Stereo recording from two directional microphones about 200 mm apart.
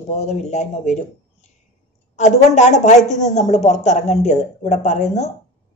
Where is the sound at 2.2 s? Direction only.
35° left (ahead or behind).